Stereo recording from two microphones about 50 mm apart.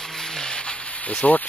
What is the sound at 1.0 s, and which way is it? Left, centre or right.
Speech, left.